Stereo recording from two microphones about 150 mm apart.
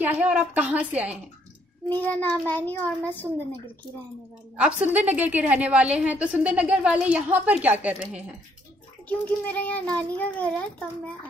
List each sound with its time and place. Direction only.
0.0 s a woman's voice: 10° right (ahead or behind)
1.9 s speech: 10° left (ahead or behind)
4.6 s a woman's voice: 10° right (ahead or behind)
9.1 s speech: 10° left (ahead or behind)